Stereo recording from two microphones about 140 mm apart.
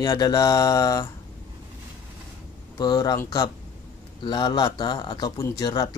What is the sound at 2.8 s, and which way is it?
Speech, 30° left (ahead or behind).